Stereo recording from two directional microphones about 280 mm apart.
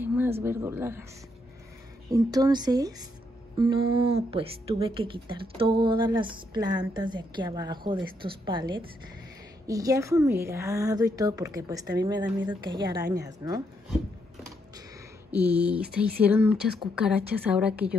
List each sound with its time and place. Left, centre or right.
0.0 s speech: centre
2.0 s speech: centre
15.3 s a woman's voice: centre